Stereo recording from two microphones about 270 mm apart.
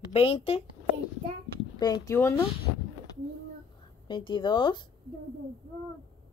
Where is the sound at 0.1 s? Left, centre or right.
Left.